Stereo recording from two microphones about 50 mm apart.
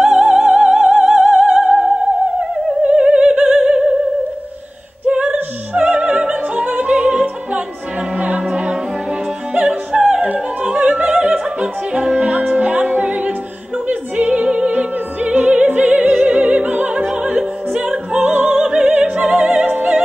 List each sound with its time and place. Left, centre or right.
0.0 s opera: centre
3.5 s a sound: centre
5.0 s opera: right
8.2 s music: right
10.8 s opera: right
11.3 s music: centre
13.8 s opera: right
16.9 s music: right
17.4 s opera: centre
18.2 s opera: right
18.6 s opera: centre
19.1 s music: right
19.6 s opera: right